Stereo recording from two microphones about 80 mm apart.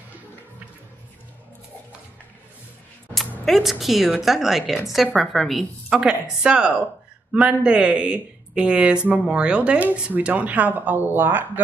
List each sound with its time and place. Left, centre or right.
3.2 s a woman's voice: centre
6.4 s speech: centre